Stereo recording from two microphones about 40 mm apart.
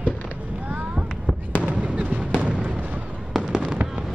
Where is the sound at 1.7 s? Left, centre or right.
Right.